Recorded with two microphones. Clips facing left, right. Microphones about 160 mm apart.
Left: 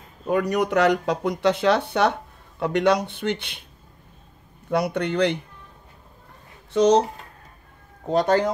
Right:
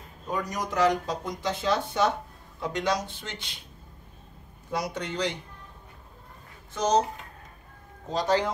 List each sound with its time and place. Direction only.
0.3 s speech: 65° left (ahead or behind)
4.6 s speech: 60° left (ahead or behind)
6.7 s speech: 70° left (ahead or behind)
8.1 s speech: 55° left (ahead or behind)